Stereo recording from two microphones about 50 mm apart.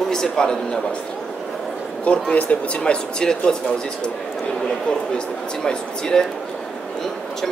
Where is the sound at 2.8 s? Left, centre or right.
Centre.